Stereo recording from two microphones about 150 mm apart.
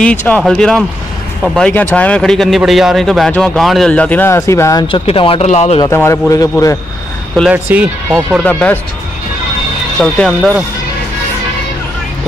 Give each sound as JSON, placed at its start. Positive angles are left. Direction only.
{"t": 0.0, "sound": "a man's voice", "side_deg": 10}
{"t": 4.9, "sound": "speech", "side_deg": 35}
{"t": 5.9, "sound": "a man's voice", "side_deg": 15}
{"t": 7.4, "sound": "speech", "side_deg": -10}
{"t": 8.5, "sound": "a man's voice", "side_deg": 10}
{"t": 9.9, "sound": "speech", "side_deg": 5}